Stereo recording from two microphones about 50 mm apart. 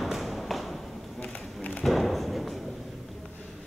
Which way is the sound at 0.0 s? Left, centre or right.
Centre.